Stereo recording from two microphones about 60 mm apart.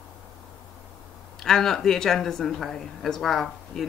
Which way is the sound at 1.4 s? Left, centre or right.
Centre.